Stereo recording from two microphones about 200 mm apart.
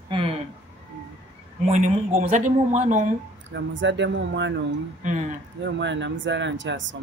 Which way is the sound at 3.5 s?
65° right (ahead or behind).